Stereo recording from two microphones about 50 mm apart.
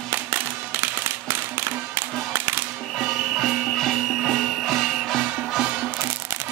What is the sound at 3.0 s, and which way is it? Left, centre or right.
Music, centre.